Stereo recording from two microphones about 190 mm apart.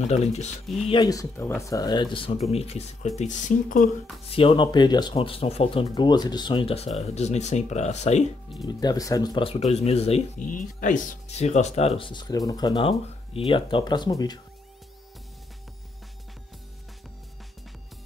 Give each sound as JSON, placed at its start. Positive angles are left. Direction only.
{"t": 0.0, "sound": "speech", "side_deg": 35}
{"t": 0.8, "sound": "speech", "side_deg": 20}
{"t": 4.3, "sound": "speech", "side_deg": 30}
{"t": 8.6, "sound": "speech", "side_deg": 20}
{"t": 10.4, "sound": "speech", "side_deg": 45}